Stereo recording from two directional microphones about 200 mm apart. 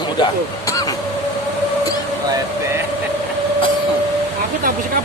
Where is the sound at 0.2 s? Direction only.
20° left (ahead or behind).